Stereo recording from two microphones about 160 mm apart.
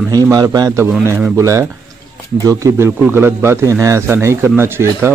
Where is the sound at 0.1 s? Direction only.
20° right (ahead or behind).